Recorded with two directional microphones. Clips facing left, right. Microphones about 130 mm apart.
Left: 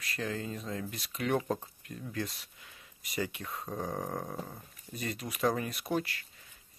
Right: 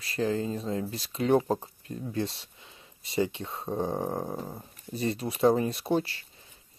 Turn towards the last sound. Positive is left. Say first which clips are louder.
# right 1 dB
turn(degrees=-30)  # may be behind; listen again after turning